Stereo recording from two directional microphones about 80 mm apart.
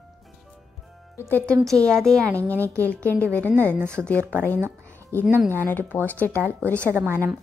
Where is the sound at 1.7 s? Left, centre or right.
Centre.